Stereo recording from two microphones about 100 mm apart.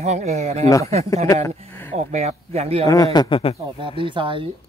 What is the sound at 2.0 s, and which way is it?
Speech, 90° right.